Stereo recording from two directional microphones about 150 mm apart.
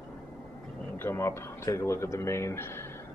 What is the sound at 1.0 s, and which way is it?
Speech, 15° left (ahead or behind).